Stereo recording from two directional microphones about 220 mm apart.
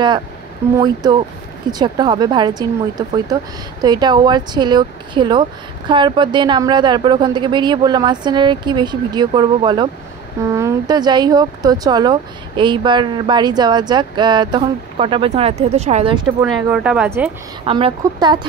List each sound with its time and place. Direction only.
0.7 s speech: 20° right (ahead or behind)
16.3 s speech: 5° right (ahead or behind)
17.6 s speech: 25° right (ahead or behind)